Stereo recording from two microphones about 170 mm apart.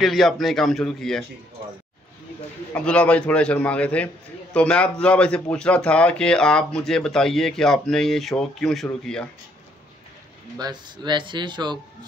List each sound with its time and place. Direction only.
0.0 s speech: centre (ahead or behind)
2.7 s a man's voice: 5° left (ahead or behind)
10.6 s speech: 25° right (ahead or behind)